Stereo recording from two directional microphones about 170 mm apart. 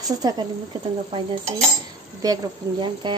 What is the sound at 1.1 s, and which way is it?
Dishes, 40° right (ahead or behind).